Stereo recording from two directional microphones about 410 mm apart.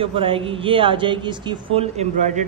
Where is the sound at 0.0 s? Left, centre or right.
Centre.